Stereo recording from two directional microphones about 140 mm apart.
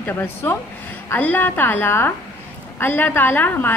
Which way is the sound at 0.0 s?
15° left (ahead or behind).